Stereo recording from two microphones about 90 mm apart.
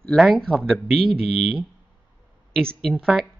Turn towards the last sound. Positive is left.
turn(degrees=5)  # may be behind; listen again after turning